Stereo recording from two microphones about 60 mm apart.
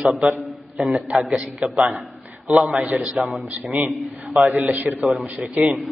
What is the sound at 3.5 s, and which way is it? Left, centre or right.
A man's voice, right.